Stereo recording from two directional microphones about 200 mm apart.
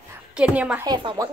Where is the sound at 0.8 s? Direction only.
20° right (ahead or behind).